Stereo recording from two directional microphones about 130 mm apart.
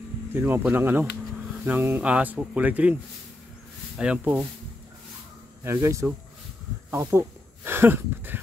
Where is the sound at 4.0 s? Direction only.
10° right (ahead or behind).